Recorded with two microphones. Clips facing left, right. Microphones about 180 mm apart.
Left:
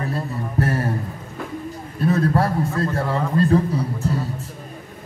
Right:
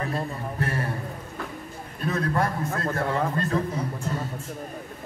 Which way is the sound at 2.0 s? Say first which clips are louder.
Left 6 dB; 35° left (ahead or behind).